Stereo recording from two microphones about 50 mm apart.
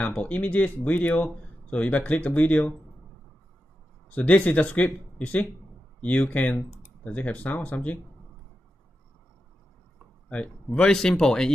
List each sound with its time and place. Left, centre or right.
0.0 s speech: left
4.1 s speech: left
10.3 s speech: left